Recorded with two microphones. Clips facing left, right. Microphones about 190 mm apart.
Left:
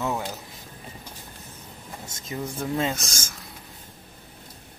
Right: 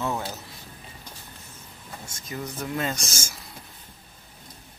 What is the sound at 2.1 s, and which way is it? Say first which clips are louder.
Speech: left 2 dB; 25° left (ahead or behind).